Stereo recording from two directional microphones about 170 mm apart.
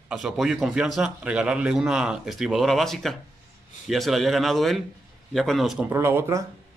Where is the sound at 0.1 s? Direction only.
5° right (ahead or behind).